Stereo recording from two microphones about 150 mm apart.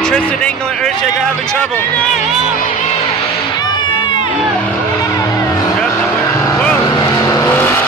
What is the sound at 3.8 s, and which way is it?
Crowd, 30° left (ahead or behind).